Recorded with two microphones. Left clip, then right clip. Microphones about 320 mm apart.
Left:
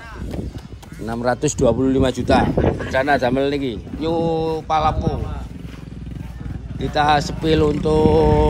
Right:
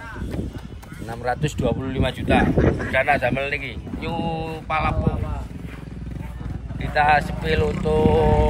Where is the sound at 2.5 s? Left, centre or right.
Centre.